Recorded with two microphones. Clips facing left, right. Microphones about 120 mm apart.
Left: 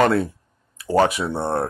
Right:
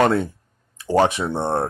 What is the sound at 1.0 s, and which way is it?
Speech, 30° right (ahead or behind).